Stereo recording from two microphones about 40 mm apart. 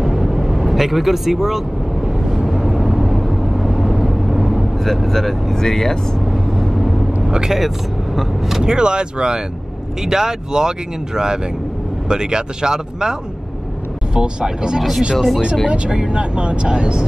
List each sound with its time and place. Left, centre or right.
0.0 s vehicle: centre
5.6 s speech: centre
6.6 s vehicle: centre
7.2 s speech: centre
8.6 s speech: right
12.1 s speech: centre
14.1 s speech: right
14.8 s speech: centre
15.7 s speech: right